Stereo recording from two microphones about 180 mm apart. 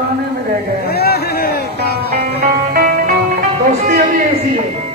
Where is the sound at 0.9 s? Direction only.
60° left (ahead or behind).